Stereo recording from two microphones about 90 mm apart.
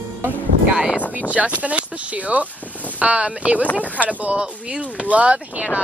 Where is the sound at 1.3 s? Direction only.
15° right (ahead or behind).